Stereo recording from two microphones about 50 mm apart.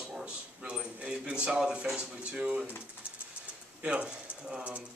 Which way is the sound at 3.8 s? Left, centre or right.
Right.